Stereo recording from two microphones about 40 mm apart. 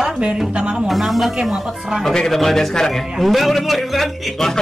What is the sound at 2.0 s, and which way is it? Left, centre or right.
Speech, centre.